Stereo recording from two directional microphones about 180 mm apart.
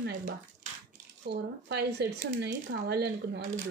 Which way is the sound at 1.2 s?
70° right (ahead or behind).